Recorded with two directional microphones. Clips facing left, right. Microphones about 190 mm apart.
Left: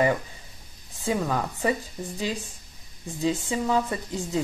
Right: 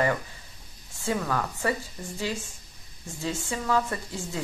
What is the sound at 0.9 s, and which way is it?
Speech, 15° left (ahead or behind).